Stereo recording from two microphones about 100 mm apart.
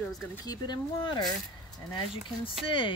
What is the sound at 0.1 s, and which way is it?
Speech, 45° left (ahead or behind).